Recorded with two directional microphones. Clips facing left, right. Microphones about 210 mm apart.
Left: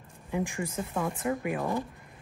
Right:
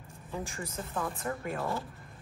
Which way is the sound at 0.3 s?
15° left (ahead or behind).